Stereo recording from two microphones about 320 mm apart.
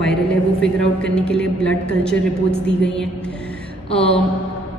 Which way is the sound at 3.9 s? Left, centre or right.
Centre.